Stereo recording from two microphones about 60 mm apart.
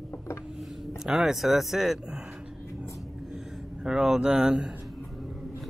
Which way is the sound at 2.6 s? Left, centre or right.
Left.